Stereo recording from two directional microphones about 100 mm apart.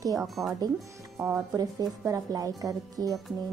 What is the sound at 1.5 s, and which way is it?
Speech, 40° right (ahead or behind).